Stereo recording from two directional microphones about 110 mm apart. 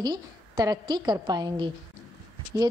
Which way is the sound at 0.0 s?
35° right (ahead or behind).